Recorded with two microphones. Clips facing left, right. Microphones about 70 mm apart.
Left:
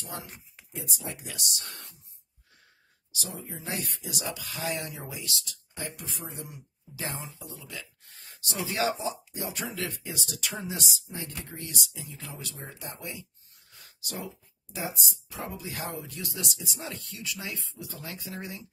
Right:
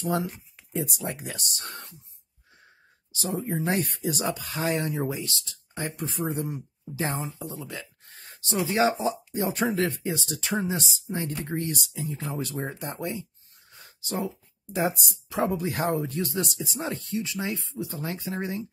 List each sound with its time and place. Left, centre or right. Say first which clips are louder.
0.7 s speech: right 8 dB; right
3.1 s a sound: right 9 dB; right
3.3 s speech: right 11 dB; right
8.1 s a sound: right 8 dB; right
8.5 s speech: right 6 dB; right
9.0 s speech: right 7 dB; right
13.7 s a sound: right 8 dB; right
15.2 s speech: right 13 dB; right
15.6 s speech: right 10 dB; right